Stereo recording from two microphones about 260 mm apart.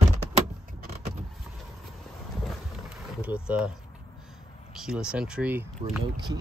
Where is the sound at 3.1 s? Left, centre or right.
Centre.